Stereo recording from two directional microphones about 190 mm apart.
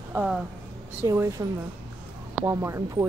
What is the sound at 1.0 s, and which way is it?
Speech, 15° right (ahead or behind).